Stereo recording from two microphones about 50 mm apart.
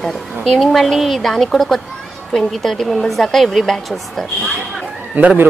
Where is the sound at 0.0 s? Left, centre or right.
Centre.